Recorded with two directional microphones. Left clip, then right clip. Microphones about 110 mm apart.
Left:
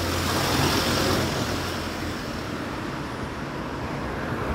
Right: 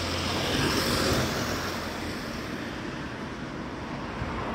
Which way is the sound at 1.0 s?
45° right (ahead or behind).